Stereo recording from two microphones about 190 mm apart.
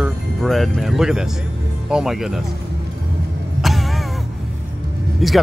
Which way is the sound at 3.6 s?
Centre (ahead or behind).